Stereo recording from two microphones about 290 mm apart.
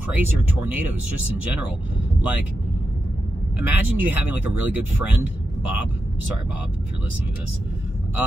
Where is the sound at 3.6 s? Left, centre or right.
Centre.